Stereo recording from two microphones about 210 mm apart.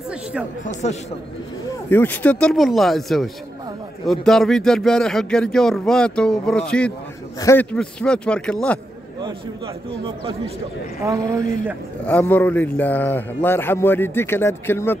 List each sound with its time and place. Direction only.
0.8 s speech: 35° left (ahead or behind)
1.9 s a man's voice: 10° left (ahead or behind)
7.7 s speech: 5° left (ahead or behind)
12.1 s a man's voice: 5° left (ahead or behind)